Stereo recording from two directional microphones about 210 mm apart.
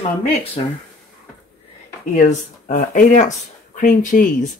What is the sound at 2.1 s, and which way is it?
Speech, 35° left (ahead or behind).